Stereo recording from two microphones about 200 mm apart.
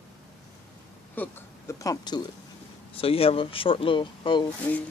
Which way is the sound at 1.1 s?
10° left (ahead or behind).